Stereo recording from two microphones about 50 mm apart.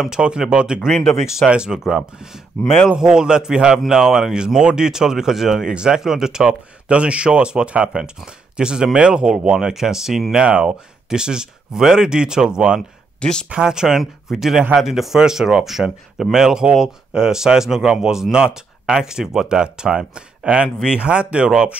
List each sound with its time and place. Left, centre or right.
0.2 s speech: centre
0.7 s speech: centre
1.1 s speech: centre
13.2 s speech: centre
13.5 s speech: centre